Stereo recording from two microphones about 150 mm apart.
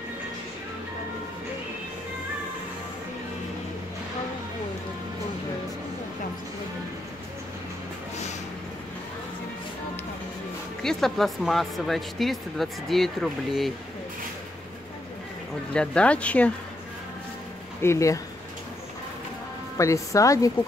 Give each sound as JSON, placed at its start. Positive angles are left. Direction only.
{"t": 10.8, "sound": "speech", "side_deg": 0}
{"t": 15.7, "sound": "speech", "side_deg": 5}
{"t": 17.8, "sound": "speech", "side_deg": 20}
{"t": 19.8, "sound": "speech", "side_deg": 20}